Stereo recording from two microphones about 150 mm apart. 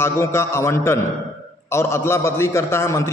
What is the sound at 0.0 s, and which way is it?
A man's voice, 15° left (ahead or behind).